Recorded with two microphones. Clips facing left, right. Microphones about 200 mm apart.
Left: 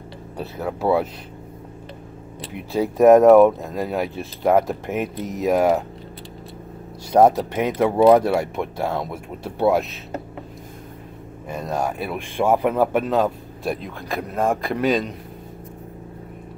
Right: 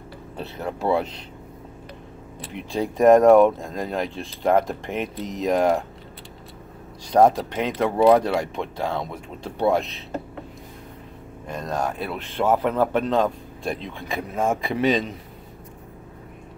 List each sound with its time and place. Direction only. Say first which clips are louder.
0.4 s speech: left 3 dB; 5° left (ahead or behind)
2.5 s speech: left 3 dB; 5° left (ahead or behind)
7.1 s speech: left 2 dB; 10° left (ahead or behind)
11.4 s speech: left 2 dB; 10° left (ahead or behind)